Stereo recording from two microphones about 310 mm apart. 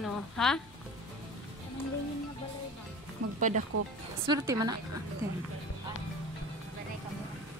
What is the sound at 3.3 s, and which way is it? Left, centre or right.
Speech, right.